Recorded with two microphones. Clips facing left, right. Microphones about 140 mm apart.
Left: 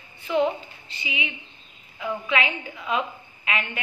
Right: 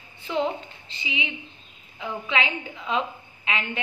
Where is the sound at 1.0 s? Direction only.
30° right (ahead or behind).